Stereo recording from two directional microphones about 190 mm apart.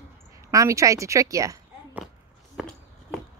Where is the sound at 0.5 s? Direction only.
15° right (ahead or behind).